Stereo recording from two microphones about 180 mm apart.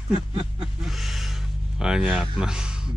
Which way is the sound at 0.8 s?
Centre (ahead or behind).